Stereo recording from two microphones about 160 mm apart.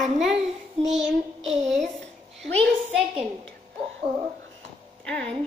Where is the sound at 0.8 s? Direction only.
40° right (ahead or behind).